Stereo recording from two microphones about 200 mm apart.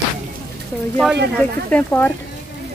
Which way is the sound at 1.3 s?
10° left (ahead or behind).